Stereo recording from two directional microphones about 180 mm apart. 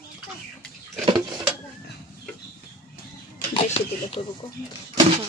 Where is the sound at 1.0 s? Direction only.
25° right (ahead or behind).